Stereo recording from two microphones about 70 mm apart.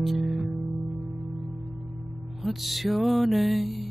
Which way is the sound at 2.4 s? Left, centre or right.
Centre.